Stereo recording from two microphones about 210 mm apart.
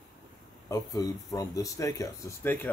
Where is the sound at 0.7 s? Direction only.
15° left (ahead or behind).